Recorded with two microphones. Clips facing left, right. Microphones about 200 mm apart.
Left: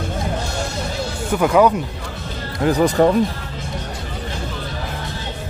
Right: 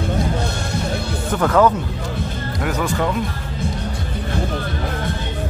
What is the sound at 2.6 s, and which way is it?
Speech, 35° left (ahead or behind).